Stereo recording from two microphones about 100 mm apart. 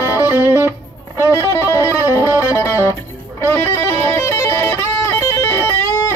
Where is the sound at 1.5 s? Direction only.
25° left (ahead or behind).